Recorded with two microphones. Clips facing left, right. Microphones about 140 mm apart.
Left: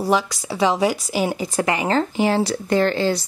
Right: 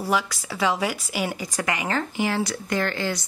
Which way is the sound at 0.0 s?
30° left (ahead or behind).